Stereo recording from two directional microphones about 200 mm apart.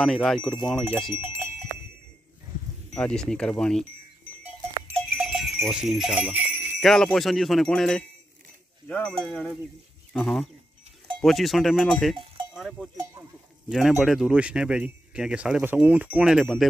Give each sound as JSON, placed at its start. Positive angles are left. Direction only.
{"t": 0.0, "sound": "speech", "side_deg": 0}
{"t": 1.2, "sound": "sheep", "side_deg": -10}
{"t": 2.9, "sound": "speech", "side_deg": 5}
{"t": 5.0, "sound": "jingle bell", "side_deg": -5}
{"t": 8.8, "sound": "speech", "side_deg": 5}
{"t": 12.9, "sound": "speech", "side_deg": -15}
{"t": 13.7, "sound": "speech", "side_deg": 0}